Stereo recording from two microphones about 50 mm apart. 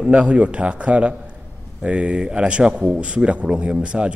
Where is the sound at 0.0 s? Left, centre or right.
Right.